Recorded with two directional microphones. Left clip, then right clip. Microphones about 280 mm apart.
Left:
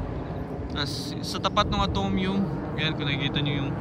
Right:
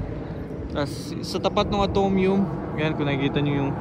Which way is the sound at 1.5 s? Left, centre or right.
Right.